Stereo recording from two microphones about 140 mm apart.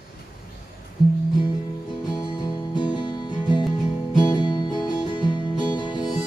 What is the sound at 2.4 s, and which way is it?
Music, 35° left (ahead or behind).